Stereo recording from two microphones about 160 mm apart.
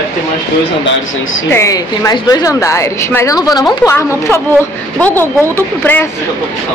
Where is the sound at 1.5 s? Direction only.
20° left (ahead or behind).